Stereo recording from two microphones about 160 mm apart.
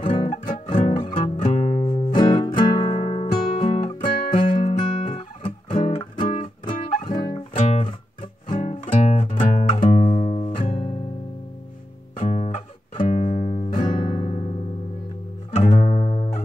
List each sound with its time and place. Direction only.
0.2 s music: 30° left (ahead or behind); by 9.8 s 50° left (ahead or behind)
9.8 s music: 30° left (ahead or behind)
10.1 s music: 45° left (ahead or behind)
12.3 s music: 45° left (ahead or behind)
13.7 s music: 30° left (ahead or behind)
14.1 s music: 45° left (ahead or behind)
15.5 s music: 45° left (ahead or behind)